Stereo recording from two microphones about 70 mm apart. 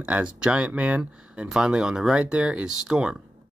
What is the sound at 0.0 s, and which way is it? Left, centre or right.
Speech, centre.